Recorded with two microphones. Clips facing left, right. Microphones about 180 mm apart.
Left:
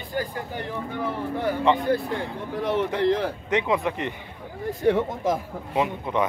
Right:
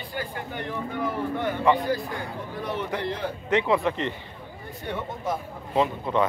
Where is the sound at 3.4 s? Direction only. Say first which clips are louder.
Right 3 dB; 20° left (ahead or behind).